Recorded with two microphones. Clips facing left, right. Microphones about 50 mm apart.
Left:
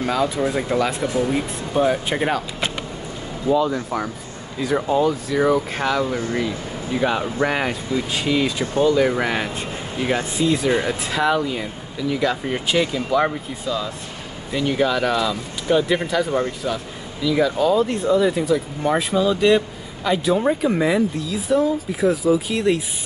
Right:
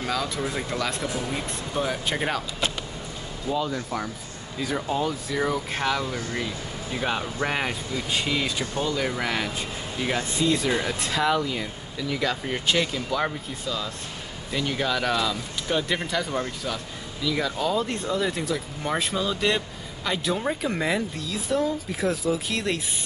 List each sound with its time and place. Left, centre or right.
0.0 s speech: centre
3.6 s speech: centre
6.0 s speech: left
7.4 s speech: centre
8.8 s speech: centre